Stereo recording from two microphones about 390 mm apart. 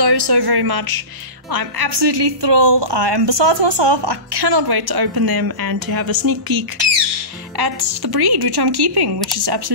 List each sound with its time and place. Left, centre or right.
0.0 s a woman's voice: right